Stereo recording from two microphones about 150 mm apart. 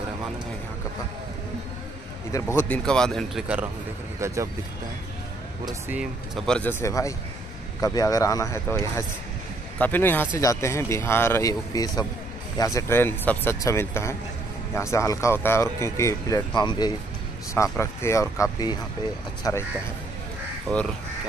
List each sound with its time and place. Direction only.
2.5 s speech: 5° left (ahead or behind)
4.2 s speech: 20° right (ahead or behind)
5.9 s speech: 5° right (ahead or behind)
6.4 s speech: 10° left (ahead or behind); by 16.9 s 30° left (ahead or behind)
17.6 s speech: 20° left (ahead or behind)
20.6 s speech: centre (ahead or behind)